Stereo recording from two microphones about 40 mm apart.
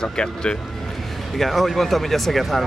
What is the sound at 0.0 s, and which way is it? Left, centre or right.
Speech, left.